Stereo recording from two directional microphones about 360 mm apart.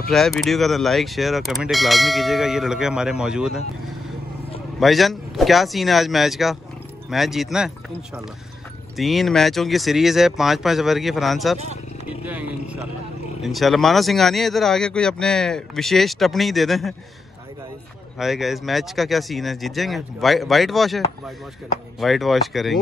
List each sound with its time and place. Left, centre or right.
0.1 s speech: centre
4.7 s speech: centre
8.9 s speech: centre
11.5 s speech: centre
13.4 s speech: centre
18.2 s speech: centre
22.0 s speech: centre